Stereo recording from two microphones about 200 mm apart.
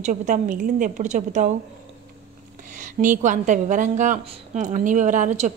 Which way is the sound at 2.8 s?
40° right (ahead or behind).